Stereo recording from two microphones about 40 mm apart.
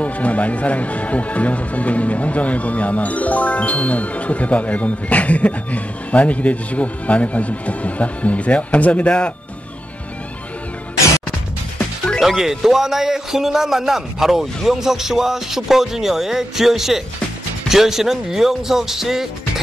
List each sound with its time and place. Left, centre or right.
0.0 s speech: left
12.2 s speech: centre